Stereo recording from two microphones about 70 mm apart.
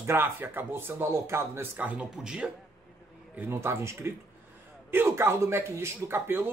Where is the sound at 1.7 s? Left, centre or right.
Right.